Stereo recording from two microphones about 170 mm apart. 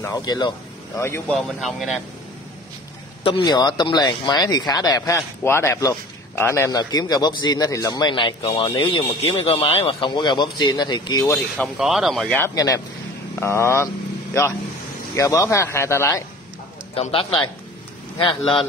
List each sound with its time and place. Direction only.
0.0 s speech: 25° left (ahead or behind)
1.3 s speech: centre (ahead or behind)
3.3 s speech: 25° left (ahead or behind)
11.7 s speech: centre (ahead or behind)
12.4 s speech: 20° left (ahead or behind)
15.1 s speech: 20° left (ahead or behind)
16.9 s speech: 35° left (ahead or behind)